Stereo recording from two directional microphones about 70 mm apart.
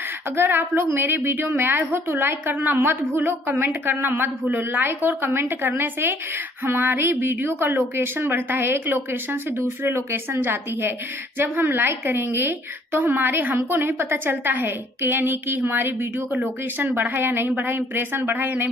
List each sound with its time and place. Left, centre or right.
0.4 s a woman's voice: right